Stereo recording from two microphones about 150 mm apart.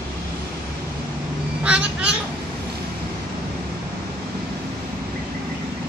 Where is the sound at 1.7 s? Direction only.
5° right (ahead or behind).